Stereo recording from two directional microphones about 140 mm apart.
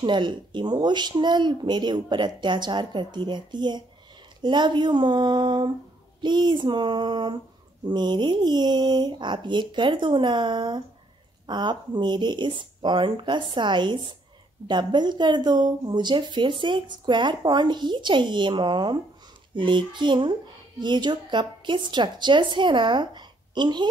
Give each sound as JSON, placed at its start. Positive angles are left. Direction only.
{"t": 0.0, "sound": "speech", "side_deg": -35}